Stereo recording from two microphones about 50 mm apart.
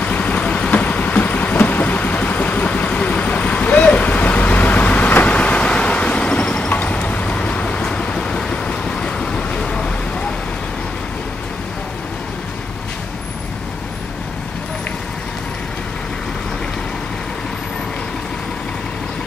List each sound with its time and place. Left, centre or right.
0.0 s vehicle: left